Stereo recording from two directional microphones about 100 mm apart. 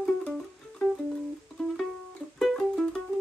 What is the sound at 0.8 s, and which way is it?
Music, 15° left (ahead or behind).